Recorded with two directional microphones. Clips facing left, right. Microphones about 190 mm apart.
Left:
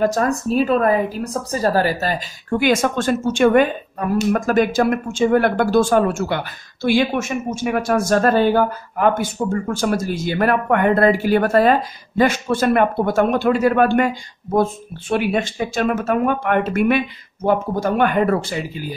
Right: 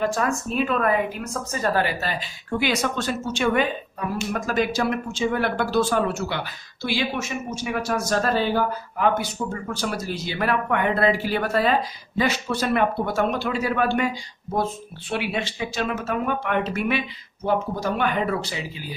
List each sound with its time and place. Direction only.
0.0 s a woman's voice: 40° left (ahead or behind)